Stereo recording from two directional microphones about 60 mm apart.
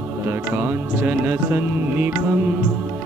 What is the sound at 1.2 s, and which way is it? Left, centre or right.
Music, right.